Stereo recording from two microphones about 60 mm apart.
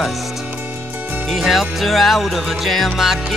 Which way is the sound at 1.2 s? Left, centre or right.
Centre.